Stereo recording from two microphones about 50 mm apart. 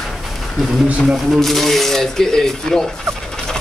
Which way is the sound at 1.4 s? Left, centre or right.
Centre.